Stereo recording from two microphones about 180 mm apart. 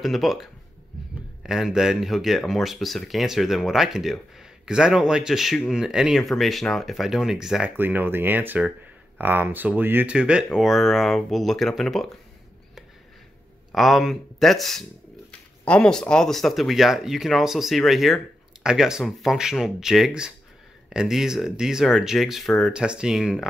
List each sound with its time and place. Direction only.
0.0 s speech: centre (ahead or behind)
13.7 s speech: centre (ahead or behind)